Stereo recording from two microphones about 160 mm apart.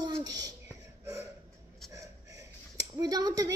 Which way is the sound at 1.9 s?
20° right (ahead or behind).